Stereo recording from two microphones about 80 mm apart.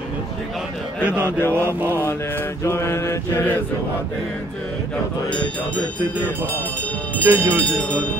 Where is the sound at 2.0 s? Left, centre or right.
Left.